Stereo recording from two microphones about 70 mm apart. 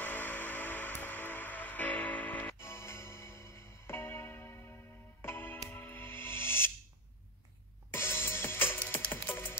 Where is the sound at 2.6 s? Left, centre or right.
Left.